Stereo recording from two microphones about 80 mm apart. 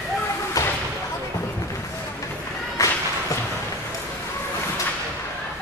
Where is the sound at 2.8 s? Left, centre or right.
Left.